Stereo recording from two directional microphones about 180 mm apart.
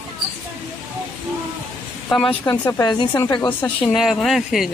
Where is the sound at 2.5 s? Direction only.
15° left (ahead or behind).